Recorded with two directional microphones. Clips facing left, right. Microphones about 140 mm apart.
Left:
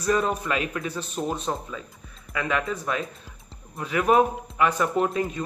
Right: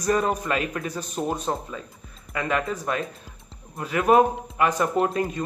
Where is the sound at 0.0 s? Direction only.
40° right (ahead or behind).